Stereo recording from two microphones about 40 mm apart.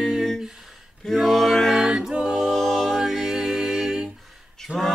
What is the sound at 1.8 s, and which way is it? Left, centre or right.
A capella, centre.